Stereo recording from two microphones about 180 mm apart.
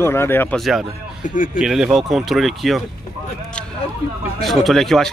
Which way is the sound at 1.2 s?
50° left (ahead or behind).